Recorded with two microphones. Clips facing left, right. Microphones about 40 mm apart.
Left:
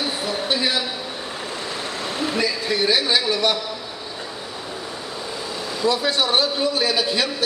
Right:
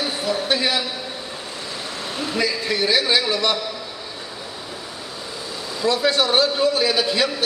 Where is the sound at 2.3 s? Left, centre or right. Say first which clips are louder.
Right 2 dB; centre.